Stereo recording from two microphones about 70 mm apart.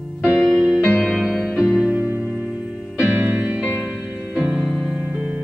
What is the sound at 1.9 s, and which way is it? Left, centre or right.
Music, right.